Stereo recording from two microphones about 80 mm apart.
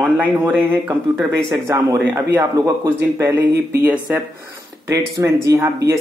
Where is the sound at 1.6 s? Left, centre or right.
Right.